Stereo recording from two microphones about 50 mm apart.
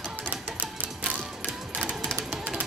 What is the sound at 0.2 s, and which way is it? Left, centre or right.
Music, right.